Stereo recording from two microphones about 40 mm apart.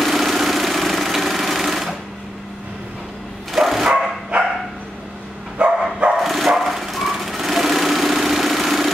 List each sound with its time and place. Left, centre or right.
0.0 s engine: centre
3.5 s dog: centre
3.8 s dog: right
5.6 s dog: right
6.1 s dog: centre